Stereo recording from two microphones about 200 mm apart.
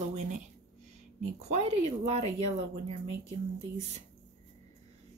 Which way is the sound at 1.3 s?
35° right (ahead or behind).